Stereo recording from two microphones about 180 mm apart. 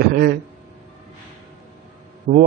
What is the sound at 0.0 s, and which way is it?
Speech, 55° right (ahead or behind).